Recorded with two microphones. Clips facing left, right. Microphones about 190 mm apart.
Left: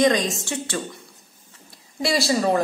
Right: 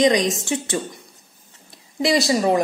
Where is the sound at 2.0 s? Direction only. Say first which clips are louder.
Right 3 dB; 20° right (ahead or behind).